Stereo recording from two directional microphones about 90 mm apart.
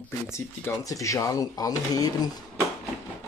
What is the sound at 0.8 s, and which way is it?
Speech, 40° left (ahead or behind).